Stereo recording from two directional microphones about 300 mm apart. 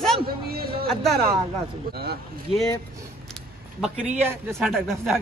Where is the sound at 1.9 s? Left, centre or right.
Right.